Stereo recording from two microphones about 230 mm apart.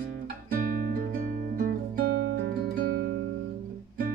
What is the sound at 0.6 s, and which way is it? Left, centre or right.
Music, right.